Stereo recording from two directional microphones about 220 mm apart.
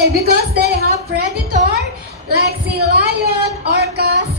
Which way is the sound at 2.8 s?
45° right (ahead or behind).